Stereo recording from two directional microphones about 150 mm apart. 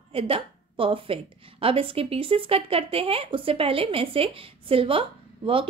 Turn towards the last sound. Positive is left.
turn(degrees=-35)  # may be behind; listen again after turning